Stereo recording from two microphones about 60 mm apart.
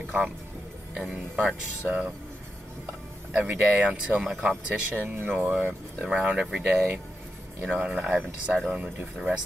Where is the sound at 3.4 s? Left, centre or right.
Right.